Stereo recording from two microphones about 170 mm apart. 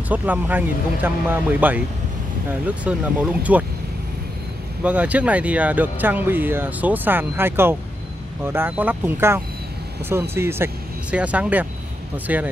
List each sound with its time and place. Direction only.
0.1 s speech: 10° right (ahead or behind)
4.8 s speech: 10° right (ahead or behind)